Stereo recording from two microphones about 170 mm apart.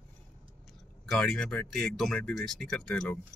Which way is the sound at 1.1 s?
5° left (ahead or behind).